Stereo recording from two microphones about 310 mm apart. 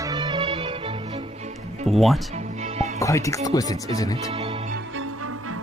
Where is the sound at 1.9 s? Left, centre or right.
Centre.